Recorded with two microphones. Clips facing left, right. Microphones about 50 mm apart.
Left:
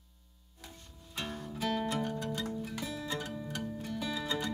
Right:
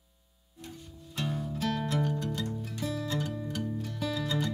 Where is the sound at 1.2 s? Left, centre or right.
Centre.